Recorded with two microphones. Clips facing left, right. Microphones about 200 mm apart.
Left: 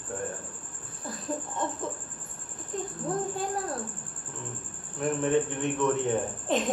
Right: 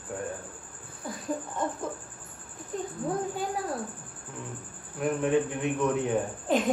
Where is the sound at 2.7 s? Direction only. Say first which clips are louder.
Right 1 dB; 5° right (ahead or behind).